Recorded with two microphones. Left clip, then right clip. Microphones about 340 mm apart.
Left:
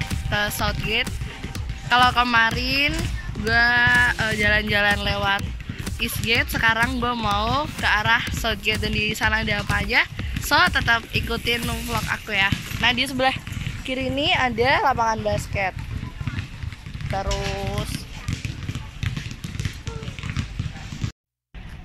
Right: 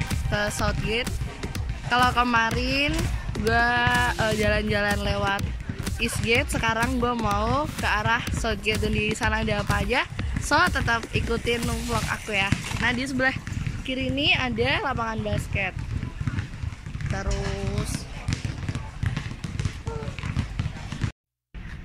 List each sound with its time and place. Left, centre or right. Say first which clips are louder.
0.1 s speech: left 3 dB; centre
14.1 s speech: left 3 dB; centre
15.2 s speech: left 5 dB; left